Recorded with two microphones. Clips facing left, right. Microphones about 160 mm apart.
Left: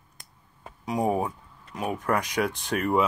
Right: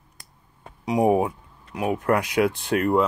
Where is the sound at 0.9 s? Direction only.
15° right (ahead or behind).